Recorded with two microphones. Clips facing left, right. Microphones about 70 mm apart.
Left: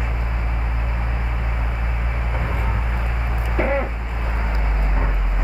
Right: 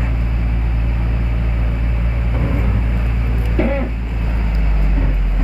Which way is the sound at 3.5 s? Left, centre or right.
Left.